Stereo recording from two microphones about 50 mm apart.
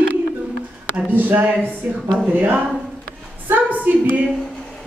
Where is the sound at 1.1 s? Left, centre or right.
Right.